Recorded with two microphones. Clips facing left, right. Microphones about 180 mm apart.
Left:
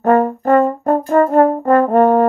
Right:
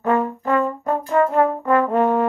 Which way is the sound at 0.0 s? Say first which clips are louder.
Left 7 dB; 50° left (ahead or behind).